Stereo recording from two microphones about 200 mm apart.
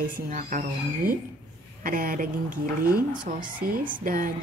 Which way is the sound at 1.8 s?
45° right (ahead or behind).